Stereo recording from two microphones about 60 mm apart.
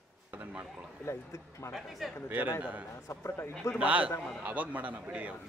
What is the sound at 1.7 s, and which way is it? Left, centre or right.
Speech, centre.